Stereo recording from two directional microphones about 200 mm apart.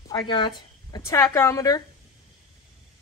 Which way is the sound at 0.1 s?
20° left (ahead or behind).